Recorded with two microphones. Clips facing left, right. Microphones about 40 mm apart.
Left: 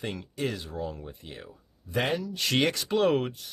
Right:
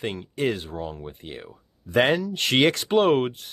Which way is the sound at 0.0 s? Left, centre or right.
Right.